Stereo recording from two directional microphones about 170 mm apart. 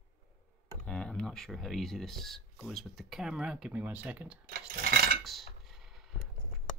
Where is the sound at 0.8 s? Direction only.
5° left (ahead or behind).